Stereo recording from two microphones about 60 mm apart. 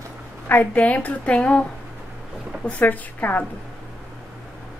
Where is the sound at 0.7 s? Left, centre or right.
Left.